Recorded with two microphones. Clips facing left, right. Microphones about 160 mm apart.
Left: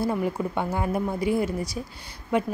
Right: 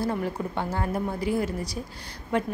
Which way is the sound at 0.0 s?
10° left (ahead or behind).